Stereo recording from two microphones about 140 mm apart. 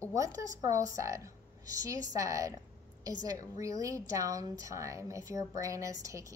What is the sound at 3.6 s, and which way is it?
A woman's voice, 25° right (ahead or behind).